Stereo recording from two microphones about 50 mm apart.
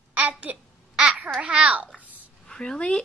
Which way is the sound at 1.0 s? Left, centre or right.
Centre.